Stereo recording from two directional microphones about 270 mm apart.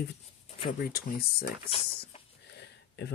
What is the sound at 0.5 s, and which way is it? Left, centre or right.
Speech, left.